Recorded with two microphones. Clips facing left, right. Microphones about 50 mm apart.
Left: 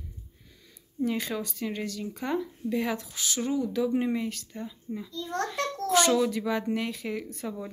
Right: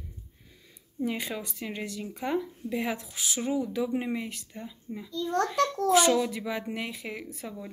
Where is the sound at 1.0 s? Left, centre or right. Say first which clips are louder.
Left 2 dB; centre.